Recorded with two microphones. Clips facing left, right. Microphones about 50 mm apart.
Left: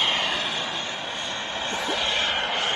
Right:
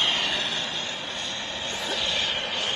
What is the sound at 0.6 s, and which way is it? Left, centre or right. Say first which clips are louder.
Vehicle: left 2 dB; left.